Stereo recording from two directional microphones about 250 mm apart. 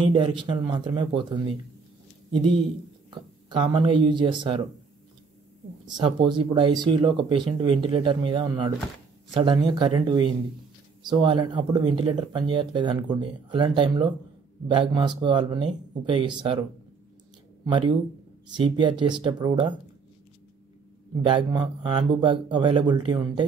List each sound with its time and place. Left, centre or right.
0.1 s speech: centre
3.4 s speech: centre
5.9 s speech: centre
18.5 s speech: centre
21.2 s speech: centre